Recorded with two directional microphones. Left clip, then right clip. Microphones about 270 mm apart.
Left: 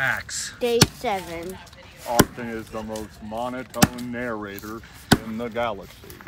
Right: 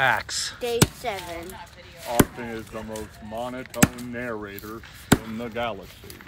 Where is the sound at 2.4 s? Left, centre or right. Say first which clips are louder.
Left 2 dB; centre.